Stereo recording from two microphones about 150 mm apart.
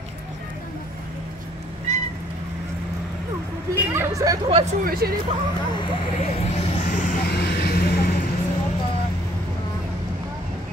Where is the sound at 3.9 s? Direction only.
20° right (ahead or behind).